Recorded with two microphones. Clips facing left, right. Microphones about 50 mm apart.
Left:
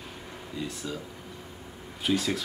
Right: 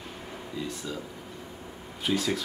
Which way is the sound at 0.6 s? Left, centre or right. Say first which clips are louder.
Even; centre.